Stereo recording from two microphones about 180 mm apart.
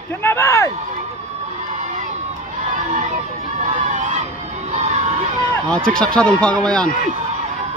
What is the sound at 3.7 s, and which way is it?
Crowd, 45° right (ahead or behind).